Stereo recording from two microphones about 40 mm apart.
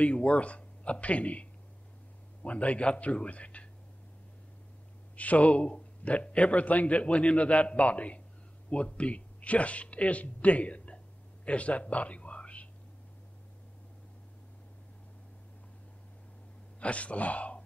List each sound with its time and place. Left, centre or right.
0.0 s a man's voice: left
5.1 s a man's voice: left
16.8 s speech: left